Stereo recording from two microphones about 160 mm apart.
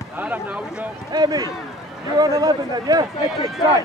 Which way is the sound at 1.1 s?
25° right (ahead or behind).